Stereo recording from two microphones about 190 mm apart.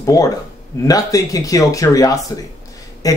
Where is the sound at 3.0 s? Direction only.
20° left (ahead or behind).